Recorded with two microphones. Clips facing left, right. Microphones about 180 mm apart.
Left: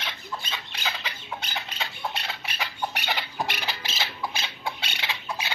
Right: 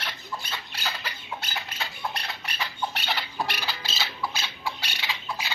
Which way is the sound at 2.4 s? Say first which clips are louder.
Even; 10° left (ahead or behind).